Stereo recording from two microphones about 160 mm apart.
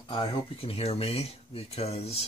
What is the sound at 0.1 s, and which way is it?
Speech, 35° left (ahead or behind).